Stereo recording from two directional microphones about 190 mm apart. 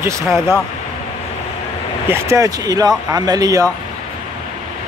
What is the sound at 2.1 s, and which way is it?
Speech, 15° right (ahead or behind).